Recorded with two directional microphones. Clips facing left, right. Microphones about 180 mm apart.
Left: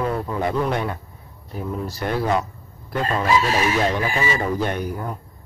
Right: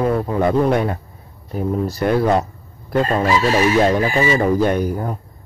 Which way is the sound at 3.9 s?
40° right (ahead or behind).